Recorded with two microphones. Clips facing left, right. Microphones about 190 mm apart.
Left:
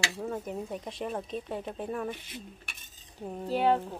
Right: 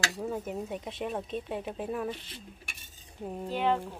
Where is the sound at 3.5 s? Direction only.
35° left (ahead or behind).